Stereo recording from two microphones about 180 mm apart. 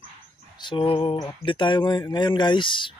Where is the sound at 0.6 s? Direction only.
25° left (ahead or behind).